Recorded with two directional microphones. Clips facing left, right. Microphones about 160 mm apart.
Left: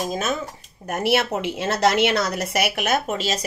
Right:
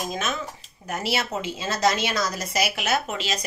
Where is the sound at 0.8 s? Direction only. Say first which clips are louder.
Left 6 dB; 55° left (ahead or behind).